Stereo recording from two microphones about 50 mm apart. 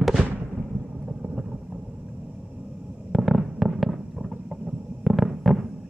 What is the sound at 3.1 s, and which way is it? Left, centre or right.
Fireworks, centre.